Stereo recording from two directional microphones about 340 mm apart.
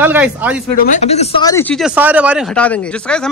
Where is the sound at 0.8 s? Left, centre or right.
Left; by 3.3 s centre.